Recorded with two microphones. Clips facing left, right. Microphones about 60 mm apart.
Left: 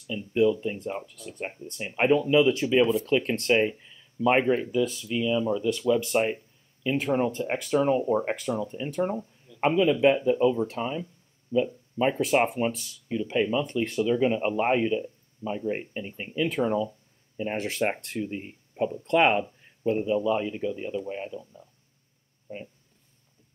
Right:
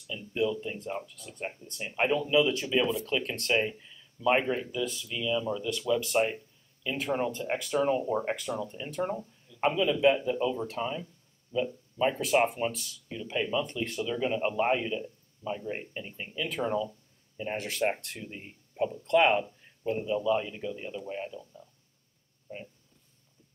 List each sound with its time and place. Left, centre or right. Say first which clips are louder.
0.1 s speech: left 7 dB; left